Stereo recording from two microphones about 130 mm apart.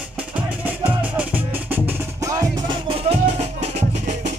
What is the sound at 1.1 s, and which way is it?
Music, 10° right (ahead or behind).